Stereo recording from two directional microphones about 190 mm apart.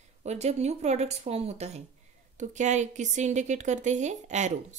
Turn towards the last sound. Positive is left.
turn(degrees=-40)  # may be behind; listen again after turning